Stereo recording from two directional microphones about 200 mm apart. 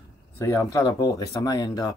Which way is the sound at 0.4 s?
15° left (ahead or behind).